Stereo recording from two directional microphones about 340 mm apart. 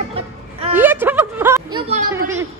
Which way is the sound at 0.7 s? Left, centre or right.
Centre.